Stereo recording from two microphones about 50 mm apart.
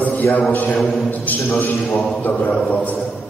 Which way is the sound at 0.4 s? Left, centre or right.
Left.